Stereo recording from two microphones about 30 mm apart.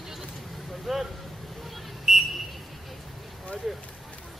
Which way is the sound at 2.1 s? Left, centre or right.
Centre.